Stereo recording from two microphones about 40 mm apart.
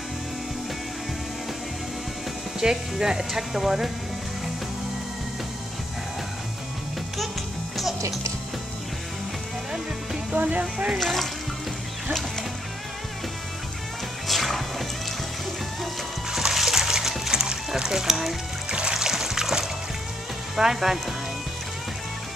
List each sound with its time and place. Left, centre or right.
2.6 s speech: centre
7.7 s music: centre
10.3 s speech: right
10.6 s speech: right
11.0 s speech: centre
14.2 s music: centre
16.3 s music: centre
18.7 s music: right
18.9 s music: centre
20.5 s speech: centre